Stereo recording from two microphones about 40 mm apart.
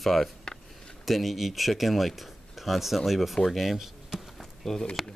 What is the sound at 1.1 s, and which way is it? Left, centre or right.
Speech, centre.